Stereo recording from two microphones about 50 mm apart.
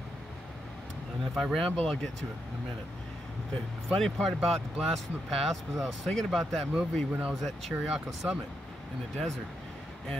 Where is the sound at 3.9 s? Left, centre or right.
Centre.